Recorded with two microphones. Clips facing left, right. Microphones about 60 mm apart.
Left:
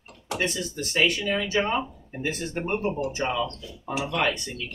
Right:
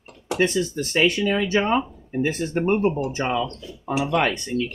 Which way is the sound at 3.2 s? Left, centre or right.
Right.